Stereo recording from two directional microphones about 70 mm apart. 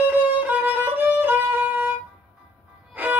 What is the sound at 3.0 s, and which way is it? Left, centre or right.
Music, right.